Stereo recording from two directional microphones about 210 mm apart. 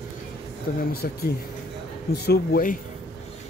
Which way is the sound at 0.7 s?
40° left (ahead or behind).